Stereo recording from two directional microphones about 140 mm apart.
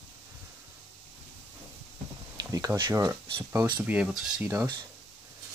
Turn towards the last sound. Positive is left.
turn(degrees=-15)  # may be behind; listen again after turning